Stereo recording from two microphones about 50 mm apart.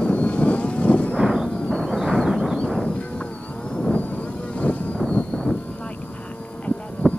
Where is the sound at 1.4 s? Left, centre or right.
Left.